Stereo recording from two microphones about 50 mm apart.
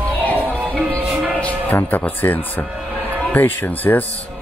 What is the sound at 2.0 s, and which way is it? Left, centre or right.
Speech, left.